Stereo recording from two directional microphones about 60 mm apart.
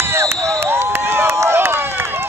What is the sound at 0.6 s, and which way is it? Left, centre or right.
Run, right.